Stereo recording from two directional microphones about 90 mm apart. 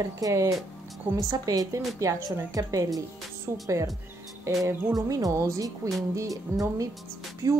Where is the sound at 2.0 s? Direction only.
30° right (ahead or behind).